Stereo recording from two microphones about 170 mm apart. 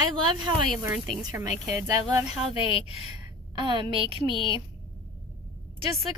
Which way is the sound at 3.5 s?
30° right (ahead or behind).